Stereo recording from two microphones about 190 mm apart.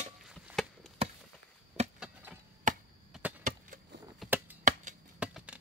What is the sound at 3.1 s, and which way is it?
Chop, 10° right (ahead or behind).